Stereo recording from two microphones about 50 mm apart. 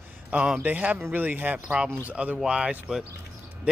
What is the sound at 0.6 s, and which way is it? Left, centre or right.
Speech, right.